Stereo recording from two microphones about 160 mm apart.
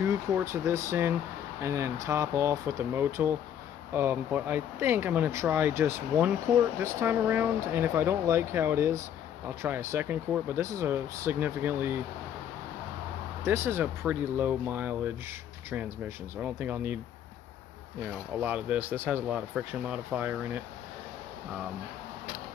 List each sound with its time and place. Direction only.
0.0 s speech: 15° right (ahead or behind)
13.4 s speech: 15° right (ahead or behind)
16.3 s speech: 10° right (ahead or behind)
18.4 s speech: 10° right (ahead or behind)